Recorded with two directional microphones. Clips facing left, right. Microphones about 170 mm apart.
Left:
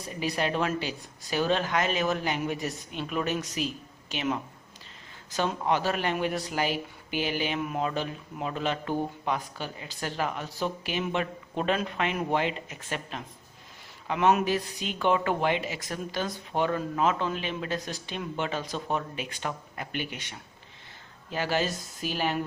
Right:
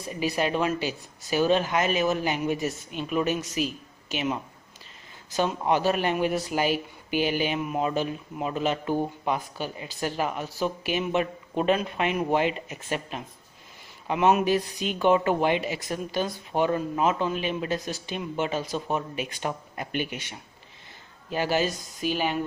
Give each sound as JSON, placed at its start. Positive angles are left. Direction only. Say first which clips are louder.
{"t": 0.2, "sound": "speech", "louder": "right 3 dB", "side_deg": -10}
{"t": 19.2, "sound": "speech", "louder": "right 3 dB", "side_deg": -15}
{"t": 21.3, "sound": "speech", "louder": "right 3 dB", "side_deg": -15}
{"t": 21.6, "sound": "speech", "louder": "right 4 dB", "side_deg": 0}